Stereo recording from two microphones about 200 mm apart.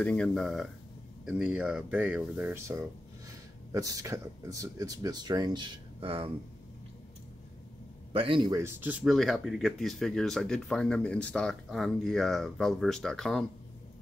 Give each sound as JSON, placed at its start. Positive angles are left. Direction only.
{"t": 0.0, "sound": "speech", "side_deg": 5}
{"t": 8.1, "sound": "a man's voice", "side_deg": -25}
{"t": 8.6, "sound": "speech", "side_deg": -10}